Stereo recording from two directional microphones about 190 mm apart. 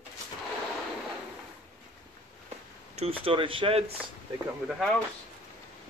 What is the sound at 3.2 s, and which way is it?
Speech, 25° right (ahead or behind).